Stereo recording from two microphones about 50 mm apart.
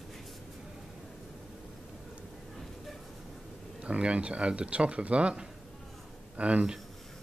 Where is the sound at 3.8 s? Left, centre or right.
Right.